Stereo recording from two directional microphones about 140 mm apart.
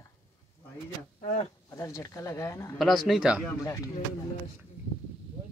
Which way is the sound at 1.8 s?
20° left (ahead or behind).